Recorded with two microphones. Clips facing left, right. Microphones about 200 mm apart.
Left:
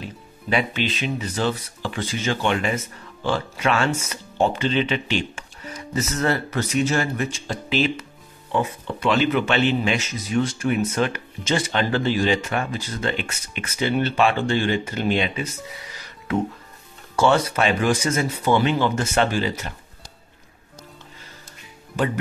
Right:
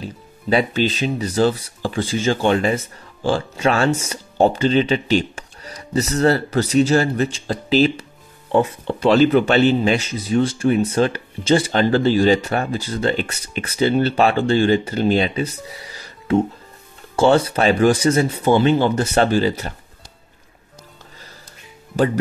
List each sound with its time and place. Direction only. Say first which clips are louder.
0.0 s speech: right 5 dB; 35° right (ahead or behind)
21.9 s speech: right 5 dB; 35° right (ahead or behind)